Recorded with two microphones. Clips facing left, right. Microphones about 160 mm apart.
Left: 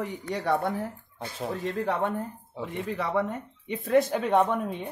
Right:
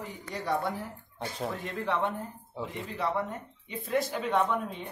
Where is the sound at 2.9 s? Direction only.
70° left (ahead or behind).